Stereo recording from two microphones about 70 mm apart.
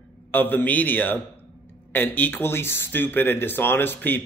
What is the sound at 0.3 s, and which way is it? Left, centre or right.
A man's voice, left.